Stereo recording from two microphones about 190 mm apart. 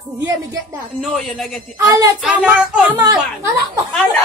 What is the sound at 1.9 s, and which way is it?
Speech, 20° right (ahead or behind).